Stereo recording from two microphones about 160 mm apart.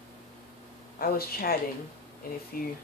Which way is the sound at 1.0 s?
70° left (ahead or behind).